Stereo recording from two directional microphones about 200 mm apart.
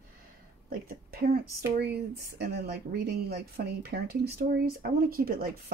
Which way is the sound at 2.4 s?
55° right (ahead or behind).